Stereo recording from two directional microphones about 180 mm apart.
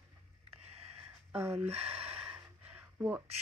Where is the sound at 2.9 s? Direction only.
10° right (ahead or behind).